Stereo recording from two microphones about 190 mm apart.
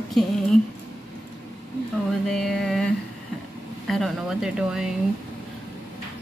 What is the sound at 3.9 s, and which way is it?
Speech, centre (ahead or behind).